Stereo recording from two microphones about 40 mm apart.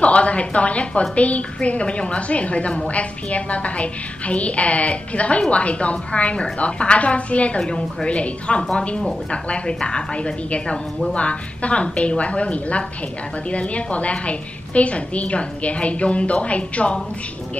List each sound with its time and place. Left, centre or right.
0.0 s a woman's voice: left
7.6 s a woman's voice: left